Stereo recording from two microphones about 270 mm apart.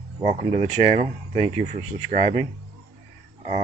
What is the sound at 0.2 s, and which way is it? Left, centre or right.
Speech, right.